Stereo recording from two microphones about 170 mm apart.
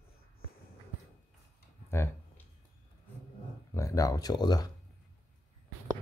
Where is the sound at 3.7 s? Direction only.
20° left (ahead or behind).